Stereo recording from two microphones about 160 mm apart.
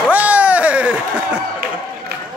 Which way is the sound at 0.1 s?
10° right (ahead or behind).